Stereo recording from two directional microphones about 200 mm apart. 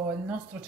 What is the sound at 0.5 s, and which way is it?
Speech, 5° right (ahead or behind).